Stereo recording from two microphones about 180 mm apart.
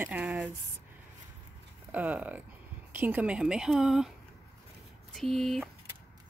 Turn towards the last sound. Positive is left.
turn(degrees=0)  # may be behind; listen again after turning